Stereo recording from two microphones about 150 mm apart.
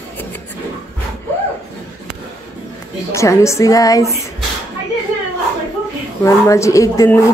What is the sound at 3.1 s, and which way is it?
Speech, 20° left (ahead or behind).